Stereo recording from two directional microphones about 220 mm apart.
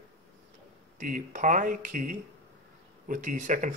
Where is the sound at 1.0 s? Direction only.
35° right (ahead or behind).